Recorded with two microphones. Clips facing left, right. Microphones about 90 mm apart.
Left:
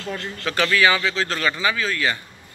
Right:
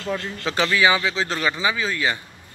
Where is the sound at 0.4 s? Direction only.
20° right (ahead or behind).